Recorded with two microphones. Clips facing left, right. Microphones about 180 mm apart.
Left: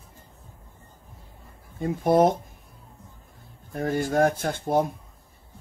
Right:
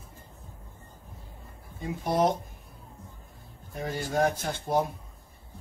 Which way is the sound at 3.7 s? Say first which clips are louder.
Left 5 dB; 55° left (ahead or behind).